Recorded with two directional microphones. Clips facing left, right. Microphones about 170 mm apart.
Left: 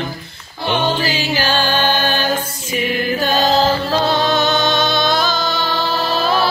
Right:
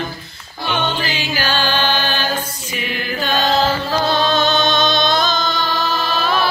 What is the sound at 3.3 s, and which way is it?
Chant, 5° left (ahead or behind).